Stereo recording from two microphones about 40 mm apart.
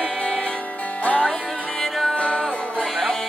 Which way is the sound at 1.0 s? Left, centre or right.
Left.